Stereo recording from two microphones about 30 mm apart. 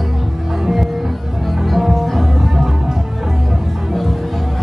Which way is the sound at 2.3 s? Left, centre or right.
Centre.